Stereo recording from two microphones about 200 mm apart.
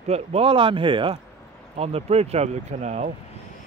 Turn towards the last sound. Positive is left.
turn(degrees=-35)  # may be behind; listen again after turning